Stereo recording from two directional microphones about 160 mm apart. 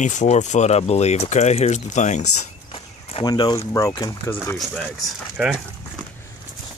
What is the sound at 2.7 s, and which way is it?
Walk, 30° left (ahead or behind).